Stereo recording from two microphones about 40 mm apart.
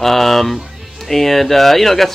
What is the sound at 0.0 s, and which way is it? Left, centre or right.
Speech, centre.